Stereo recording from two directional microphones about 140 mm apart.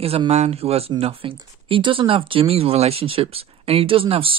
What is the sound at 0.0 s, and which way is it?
Speech, 45° right (ahead or behind).